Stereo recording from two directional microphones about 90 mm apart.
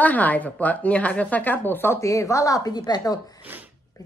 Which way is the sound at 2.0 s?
35° left (ahead or behind).